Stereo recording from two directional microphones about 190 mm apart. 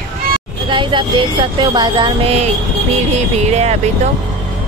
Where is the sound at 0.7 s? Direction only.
25° right (ahead or behind).